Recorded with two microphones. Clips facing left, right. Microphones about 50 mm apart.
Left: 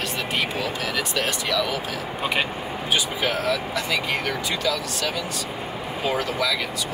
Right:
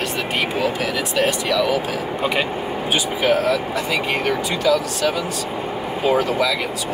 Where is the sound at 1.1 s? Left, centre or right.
Right.